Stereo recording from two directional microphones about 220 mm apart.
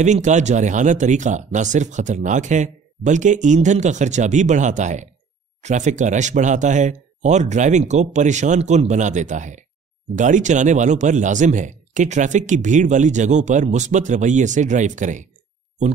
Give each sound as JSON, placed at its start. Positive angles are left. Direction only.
{"t": 0.0, "sound": "speech", "side_deg": -35}